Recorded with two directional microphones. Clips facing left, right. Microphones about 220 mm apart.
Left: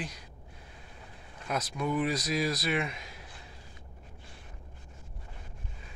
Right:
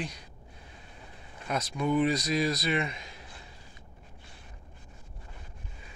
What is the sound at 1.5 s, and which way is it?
Speech, 5° left (ahead or behind).